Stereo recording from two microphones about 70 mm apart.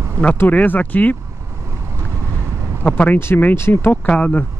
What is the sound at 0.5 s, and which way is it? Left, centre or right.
Speech, left.